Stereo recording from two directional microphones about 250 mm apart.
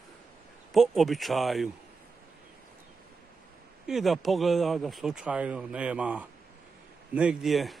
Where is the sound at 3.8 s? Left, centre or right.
Centre.